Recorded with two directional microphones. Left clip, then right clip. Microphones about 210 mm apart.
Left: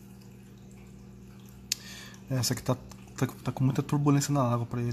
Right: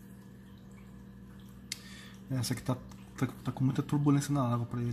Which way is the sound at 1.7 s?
15° left (ahead or behind).